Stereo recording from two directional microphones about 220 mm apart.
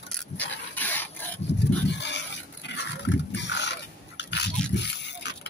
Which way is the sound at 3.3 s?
50° left (ahead or behind).